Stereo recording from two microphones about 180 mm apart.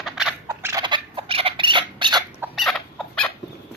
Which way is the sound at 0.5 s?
15° right (ahead or behind).